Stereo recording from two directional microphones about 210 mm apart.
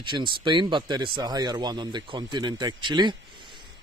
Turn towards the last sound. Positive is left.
turn(degrees=-20)  # may be behind; listen again after turning